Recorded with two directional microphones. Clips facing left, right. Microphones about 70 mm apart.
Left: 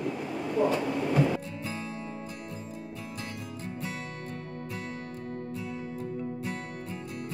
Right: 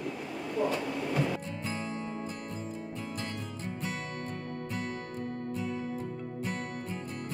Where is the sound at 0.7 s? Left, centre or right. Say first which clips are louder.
Left 5 dB; left.